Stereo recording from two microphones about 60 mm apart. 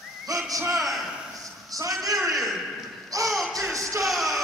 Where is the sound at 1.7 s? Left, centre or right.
Right.